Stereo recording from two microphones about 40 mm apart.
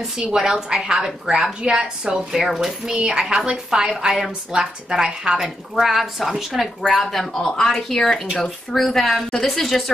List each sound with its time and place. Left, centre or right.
0.2 s a woman's voice: centre
2.3 s a woman's voice: centre
2.9 s a woman's voice: right
5.4 s a woman's voice: centre